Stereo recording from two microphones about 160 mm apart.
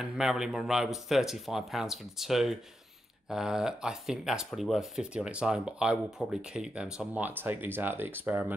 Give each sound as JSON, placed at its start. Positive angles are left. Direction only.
{"t": 0.0, "sound": "speech", "side_deg": -5}